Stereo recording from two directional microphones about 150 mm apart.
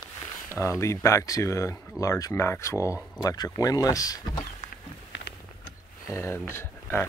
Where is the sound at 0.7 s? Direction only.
20° left (ahead or behind).